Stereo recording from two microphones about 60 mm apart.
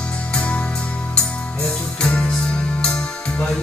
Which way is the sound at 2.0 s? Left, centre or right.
Centre.